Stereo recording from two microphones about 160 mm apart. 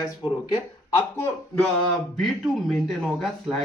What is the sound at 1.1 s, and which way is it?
Speech, 15° left (ahead or behind).